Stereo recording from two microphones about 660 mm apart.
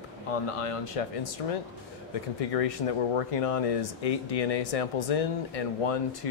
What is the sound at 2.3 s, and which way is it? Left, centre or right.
Speech, left.